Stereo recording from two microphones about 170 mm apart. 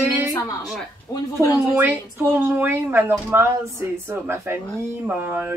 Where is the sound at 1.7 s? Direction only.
15° right (ahead or behind).